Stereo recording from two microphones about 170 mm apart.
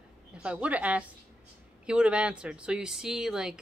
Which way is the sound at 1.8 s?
5° right (ahead or behind).